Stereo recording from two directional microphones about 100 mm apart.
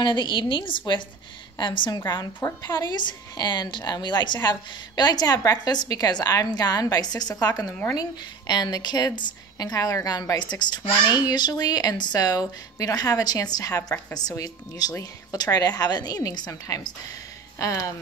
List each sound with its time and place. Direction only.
0.0 s a woman's voice: 50° left (ahead or behind)
10.4 s a woman's voice: 45° left (ahead or behind)